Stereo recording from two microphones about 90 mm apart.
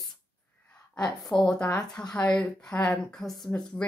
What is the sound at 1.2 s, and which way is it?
A woman's voice, 5° left (ahead or behind).